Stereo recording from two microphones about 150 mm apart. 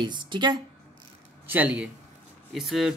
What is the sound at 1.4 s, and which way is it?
A man's voice, 10° right (ahead or behind).